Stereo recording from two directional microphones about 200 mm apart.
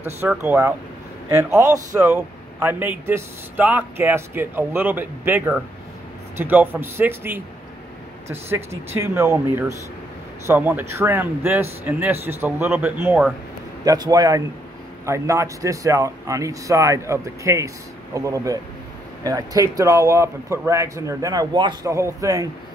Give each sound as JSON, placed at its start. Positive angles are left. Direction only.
{"t": 0.0, "sound": "speech", "side_deg": -10}
{"t": 13.8, "sound": "a man's voice", "side_deg": -20}